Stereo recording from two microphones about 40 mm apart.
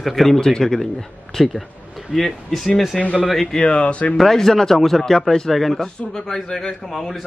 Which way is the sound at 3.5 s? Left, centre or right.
Left.